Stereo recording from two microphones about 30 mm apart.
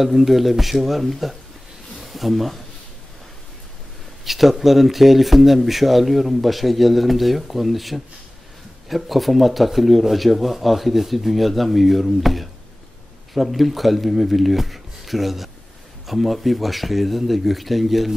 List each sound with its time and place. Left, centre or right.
0.0 s speech: centre
2.0 s a sound: centre
4.2 s speech: centre